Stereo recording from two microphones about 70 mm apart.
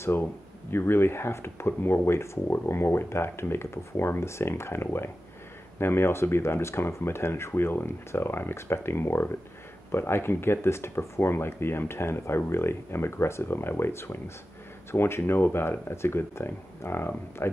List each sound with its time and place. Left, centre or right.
0.0 s speech: left